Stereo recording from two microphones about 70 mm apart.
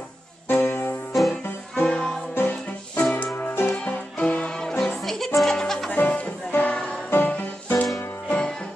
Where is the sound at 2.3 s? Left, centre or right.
Left; by 5.9 s centre.